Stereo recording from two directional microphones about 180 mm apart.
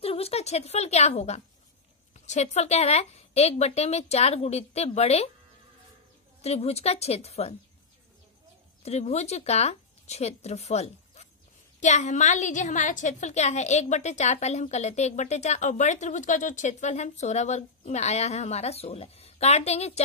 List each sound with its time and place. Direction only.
0.0 s a woman's voice: 35° left (ahead or behind)
6.4 s a woman's voice: 35° left (ahead or behind)
8.8 s a woman's voice: 35° left (ahead or behind)